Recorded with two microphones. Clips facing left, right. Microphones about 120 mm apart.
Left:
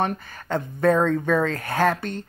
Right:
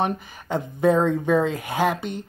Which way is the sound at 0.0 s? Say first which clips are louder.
Right 1 dB; 15° right (ahead or behind).